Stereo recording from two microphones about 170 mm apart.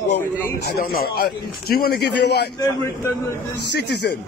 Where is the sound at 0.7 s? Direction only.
65° left (ahead or behind).